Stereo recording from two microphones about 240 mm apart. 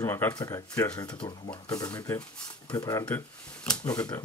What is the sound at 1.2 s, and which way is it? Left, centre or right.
Speech, centre.